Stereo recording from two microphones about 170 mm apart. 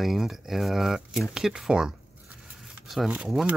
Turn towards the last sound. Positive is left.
turn(degrees=-5)  # may be behind; listen again after turning